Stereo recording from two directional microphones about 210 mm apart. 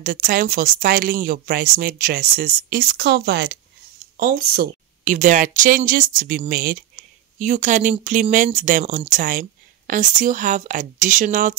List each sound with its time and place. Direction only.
0.0 s speech: 45° right (ahead or behind)
4.2 s speech: 45° right (ahead or behind)